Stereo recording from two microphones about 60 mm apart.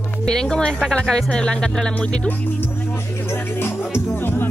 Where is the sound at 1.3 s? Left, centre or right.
Centre.